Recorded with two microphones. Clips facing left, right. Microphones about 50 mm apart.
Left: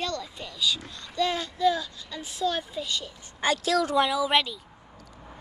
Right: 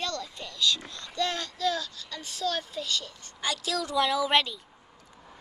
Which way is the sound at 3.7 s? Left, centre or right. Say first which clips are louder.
Left 8 dB; left.